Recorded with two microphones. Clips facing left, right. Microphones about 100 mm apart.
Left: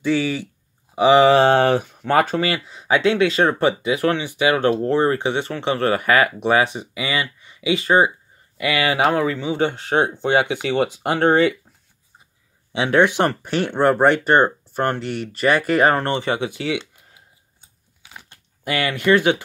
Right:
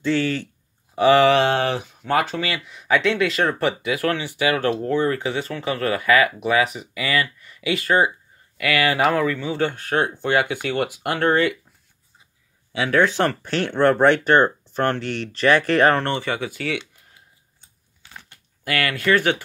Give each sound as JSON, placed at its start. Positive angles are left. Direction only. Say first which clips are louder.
{"t": 0.0, "sound": "speech", "louder": "left 1 dB", "side_deg": 15}
{"t": 1.3, "sound": "speech", "louder": "left 5 dB", "side_deg": 40}
{"t": 12.7, "sound": "speech", "louder": "left 2 dB", "side_deg": 25}
{"t": 17.6, "sound": "a sound", "louder": "left 1 dB", "side_deg": 10}
{"t": 18.3, "sound": "speech", "louder": "left 1 dB", "side_deg": 20}